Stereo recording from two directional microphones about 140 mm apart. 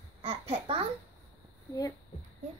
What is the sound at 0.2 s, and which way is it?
Babbling, 45° right (ahead or behind).